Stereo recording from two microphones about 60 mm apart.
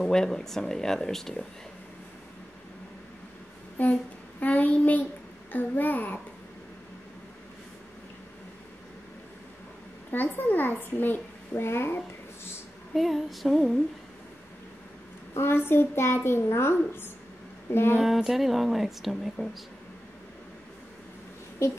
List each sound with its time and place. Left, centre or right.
0.0 s speech: centre
3.7 s a child's voice: left
10.1 s a child's voice: left
12.9 s speech: centre
15.3 s a child's voice: left
17.6 s a sound: left
17.9 s speech: centre
21.6 s a child's voice: left